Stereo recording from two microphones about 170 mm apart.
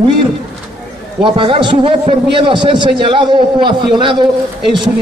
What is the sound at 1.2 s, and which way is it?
A man's voice, 30° right (ahead or behind).